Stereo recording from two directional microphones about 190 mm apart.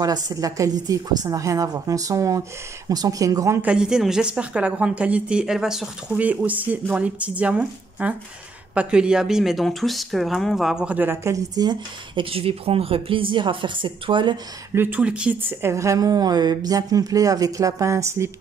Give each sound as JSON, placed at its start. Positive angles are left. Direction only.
{"t": 0.0, "sound": "speech", "side_deg": -20}
{"t": 14.7, "sound": "speech", "side_deg": -10}